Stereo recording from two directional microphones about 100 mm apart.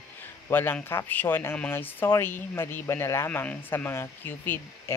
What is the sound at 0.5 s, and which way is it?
Speech, 20° left (ahead or behind).